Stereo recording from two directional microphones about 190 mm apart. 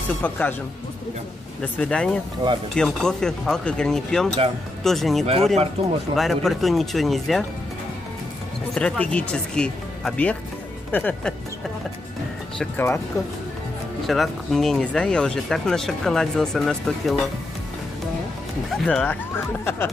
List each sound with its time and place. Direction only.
0.2 s speech: 10° left (ahead or behind)
1.6 s speech: 5° left (ahead or behind)
5.2 s speech: 30° right (ahead or behind)
6.1 s speech: centre (ahead or behind)
8.7 s speech: 5° left (ahead or behind)
12.5 s speech: 10° left (ahead or behind)
14.0 s speech: centre (ahead or behind)
18.9 s speech: 10° left (ahead or behind)